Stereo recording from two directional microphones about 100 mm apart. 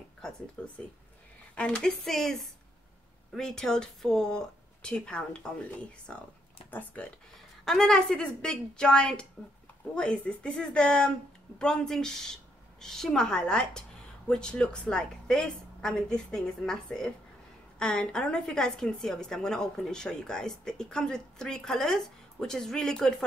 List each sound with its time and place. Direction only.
0.6 s a woman's voice: 10° left (ahead or behind)
3.3 s a woman's voice: 5° left (ahead or behind)
7.6 s a woman's voice: 5° left (ahead or behind)